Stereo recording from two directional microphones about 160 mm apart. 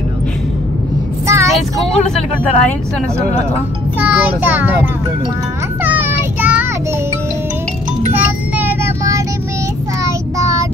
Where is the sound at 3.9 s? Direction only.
10° right (ahead or behind).